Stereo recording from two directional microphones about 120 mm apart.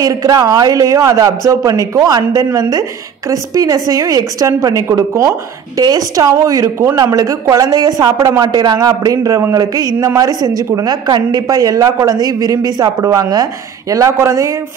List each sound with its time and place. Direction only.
0.0 s speech: 30° right (ahead or behind)